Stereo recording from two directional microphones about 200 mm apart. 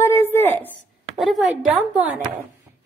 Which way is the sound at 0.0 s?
10° left (ahead or behind).